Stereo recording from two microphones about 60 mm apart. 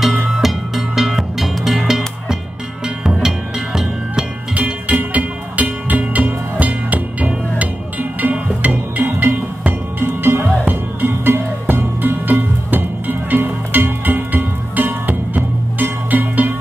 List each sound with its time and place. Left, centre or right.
0.4 s music: centre
4.6 s music: right